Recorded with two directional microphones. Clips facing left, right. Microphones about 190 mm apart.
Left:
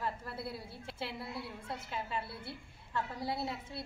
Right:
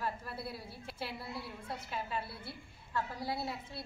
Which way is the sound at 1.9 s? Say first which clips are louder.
Even; 25° left (ahead or behind).